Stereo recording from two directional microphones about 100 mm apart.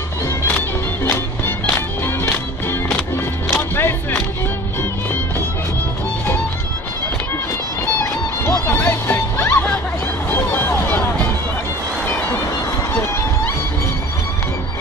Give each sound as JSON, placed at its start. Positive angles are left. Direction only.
{"t": 0.5, "sound": "music", "side_deg": 20}
{"t": 8.0, "sound": "music", "side_deg": 25}